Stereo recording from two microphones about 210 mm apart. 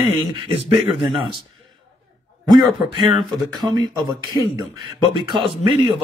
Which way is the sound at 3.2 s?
Centre (ahead or behind).